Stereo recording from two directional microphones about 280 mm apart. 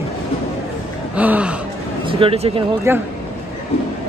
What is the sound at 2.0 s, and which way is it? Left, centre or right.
Speech, right.